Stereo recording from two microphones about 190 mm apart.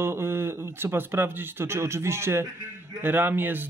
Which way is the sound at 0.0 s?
10° right (ahead or behind).